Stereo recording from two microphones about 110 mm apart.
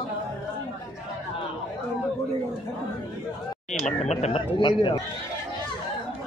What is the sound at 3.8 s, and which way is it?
Speech, 90° left.